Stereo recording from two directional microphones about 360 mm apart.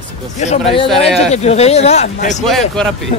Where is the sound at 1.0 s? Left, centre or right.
Centre.